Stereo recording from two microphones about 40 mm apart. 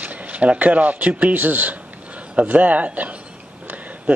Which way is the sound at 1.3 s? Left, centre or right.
Right.